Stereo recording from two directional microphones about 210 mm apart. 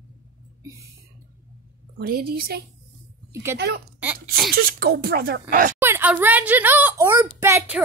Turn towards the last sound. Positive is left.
turn(degrees=-10)  # may be behind; listen again after turning